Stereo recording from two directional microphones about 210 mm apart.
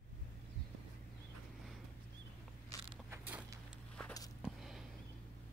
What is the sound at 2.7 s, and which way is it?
Biting, 15° left (ahead or behind).